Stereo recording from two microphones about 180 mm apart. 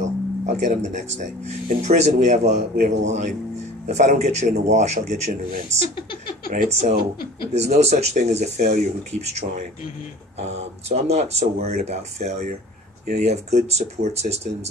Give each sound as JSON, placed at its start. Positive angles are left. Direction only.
{"t": 0.0, "sound": "music", "side_deg": -40}
{"t": 1.8, "sound": "speech", "side_deg": -40}
{"t": 6.5, "sound": "speech", "side_deg": -45}
{"t": 10.4, "sound": "speech", "side_deg": -35}